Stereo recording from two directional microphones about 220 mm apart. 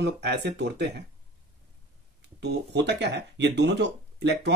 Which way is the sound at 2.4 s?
50° right (ahead or behind).